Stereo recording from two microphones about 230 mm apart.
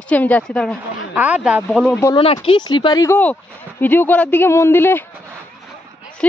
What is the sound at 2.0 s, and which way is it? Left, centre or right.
A woman's voice, centre.